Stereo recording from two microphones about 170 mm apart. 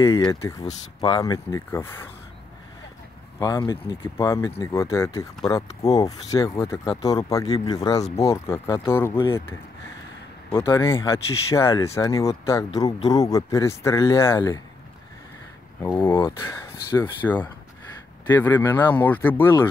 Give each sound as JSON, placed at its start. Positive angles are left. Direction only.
{"t": 0.0, "sound": "speech", "side_deg": 20}
{"t": 3.3, "sound": "speech", "side_deg": 20}
{"t": 15.8, "sound": "speech", "side_deg": 15}